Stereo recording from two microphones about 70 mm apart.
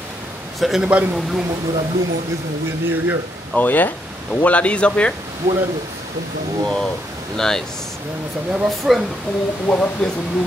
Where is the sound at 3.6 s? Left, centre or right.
Left.